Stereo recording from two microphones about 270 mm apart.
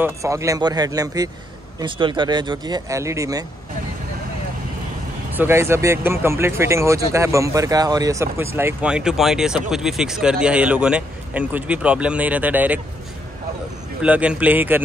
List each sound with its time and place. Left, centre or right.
0.0 s speech: centre
5.3 s a man's voice: centre
14.0 s a man's voice: centre